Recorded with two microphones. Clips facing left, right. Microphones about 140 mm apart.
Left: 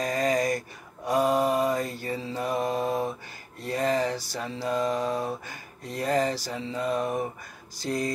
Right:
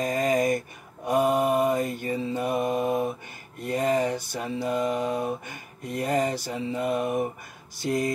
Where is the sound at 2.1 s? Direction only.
20° right (ahead or behind).